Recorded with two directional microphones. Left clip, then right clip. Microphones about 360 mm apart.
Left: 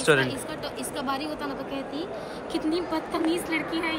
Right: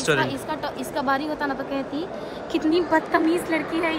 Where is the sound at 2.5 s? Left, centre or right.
Centre.